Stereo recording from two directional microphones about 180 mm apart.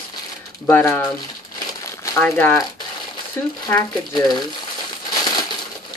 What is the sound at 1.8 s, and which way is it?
Crumpling, 15° left (ahead or behind).